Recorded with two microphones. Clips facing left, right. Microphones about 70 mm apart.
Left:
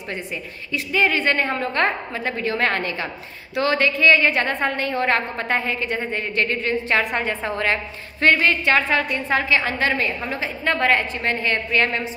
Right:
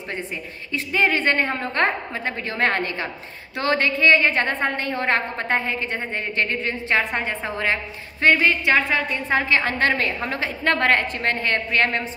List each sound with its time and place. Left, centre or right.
0.7 s a woman's voice: right
9.5 s a woman's voice: right